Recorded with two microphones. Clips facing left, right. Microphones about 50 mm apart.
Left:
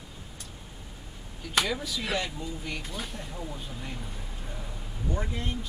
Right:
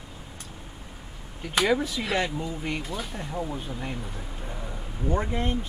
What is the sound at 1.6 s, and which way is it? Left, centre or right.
Speech, right.